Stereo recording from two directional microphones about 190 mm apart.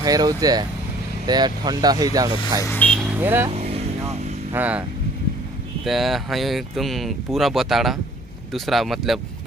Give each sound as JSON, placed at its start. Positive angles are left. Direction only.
{"t": 0.0, "sound": "speech", "side_deg": -20}
{"t": 2.6, "sound": "vehicle", "side_deg": 10}
{"t": 3.0, "sound": "vehicle", "side_deg": -10}
{"t": 4.5, "sound": "speech", "side_deg": -10}
{"t": 5.9, "sound": "speech", "side_deg": 0}